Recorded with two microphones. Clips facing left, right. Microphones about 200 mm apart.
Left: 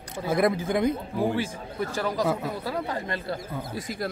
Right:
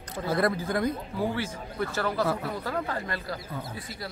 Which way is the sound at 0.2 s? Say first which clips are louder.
Left 3 dB; 20° left (ahead or behind).